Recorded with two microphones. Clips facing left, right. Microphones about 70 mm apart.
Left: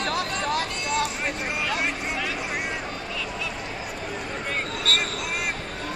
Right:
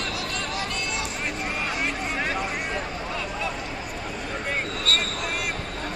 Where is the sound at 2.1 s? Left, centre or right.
Right.